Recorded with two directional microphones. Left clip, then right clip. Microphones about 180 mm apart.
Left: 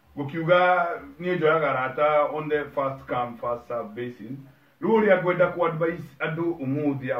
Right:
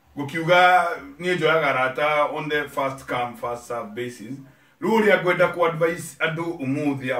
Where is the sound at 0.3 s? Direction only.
Centre (ahead or behind).